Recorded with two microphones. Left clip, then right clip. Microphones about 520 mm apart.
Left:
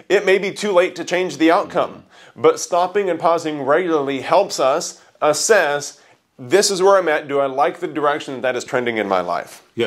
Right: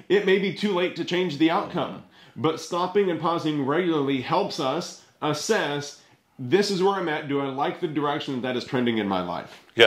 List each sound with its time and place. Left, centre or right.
0.1 s speech: left
9.8 s speech: right